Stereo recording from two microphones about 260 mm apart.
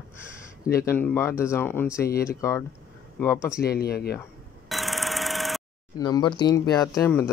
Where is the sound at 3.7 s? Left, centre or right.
Left.